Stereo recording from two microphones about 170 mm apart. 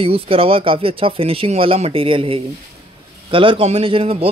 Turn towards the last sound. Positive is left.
turn(degrees=-35)  # may be behind; listen again after turning